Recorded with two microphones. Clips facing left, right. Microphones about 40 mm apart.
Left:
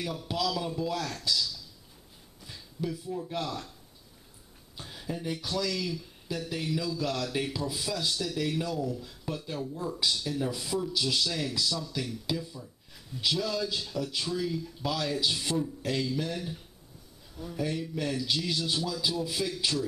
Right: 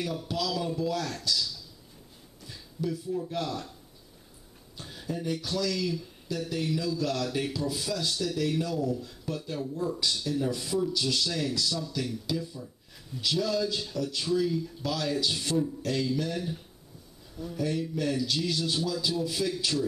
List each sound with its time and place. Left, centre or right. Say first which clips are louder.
0.0 s speech: even; centre
4.7 s speech: right 2 dB; centre
12.3 s speech: right 1 dB; centre